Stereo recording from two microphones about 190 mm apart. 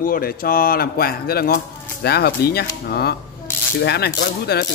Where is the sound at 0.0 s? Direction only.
50° left (ahead or behind).